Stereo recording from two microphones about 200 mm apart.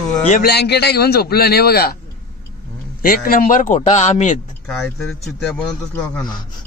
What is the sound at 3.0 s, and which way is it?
A man's voice, 45° left (ahead or behind).